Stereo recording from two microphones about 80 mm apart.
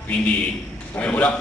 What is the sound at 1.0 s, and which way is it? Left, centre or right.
Speech, centre.